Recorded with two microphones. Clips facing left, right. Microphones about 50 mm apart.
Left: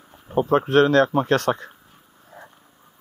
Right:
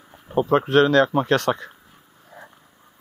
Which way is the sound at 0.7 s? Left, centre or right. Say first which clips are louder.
Even; centre.